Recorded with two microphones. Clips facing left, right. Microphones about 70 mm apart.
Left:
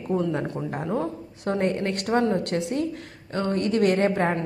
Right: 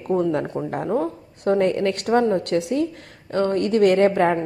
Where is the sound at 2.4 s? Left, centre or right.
Right.